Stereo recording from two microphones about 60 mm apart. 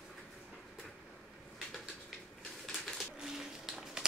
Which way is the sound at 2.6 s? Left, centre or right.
Centre.